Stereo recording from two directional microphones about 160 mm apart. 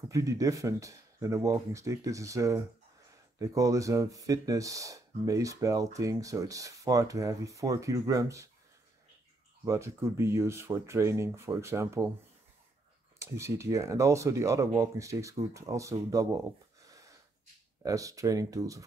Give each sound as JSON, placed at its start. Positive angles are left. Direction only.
{"t": 0.1, "sound": "speech", "side_deg": -20}
{"t": 9.7, "sound": "speech", "side_deg": -15}
{"t": 13.2, "sound": "speech", "side_deg": -15}
{"t": 17.8, "sound": "speech", "side_deg": -20}